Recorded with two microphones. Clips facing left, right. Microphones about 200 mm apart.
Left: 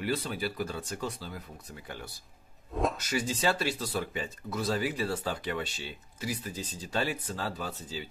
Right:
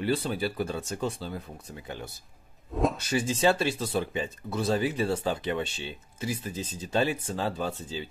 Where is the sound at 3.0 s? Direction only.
30° right (ahead or behind).